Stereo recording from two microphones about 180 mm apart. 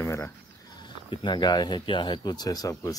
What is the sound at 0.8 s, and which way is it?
Speech, 25° left (ahead or behind).